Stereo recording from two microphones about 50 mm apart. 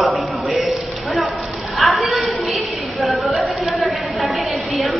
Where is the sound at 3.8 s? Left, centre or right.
Centre.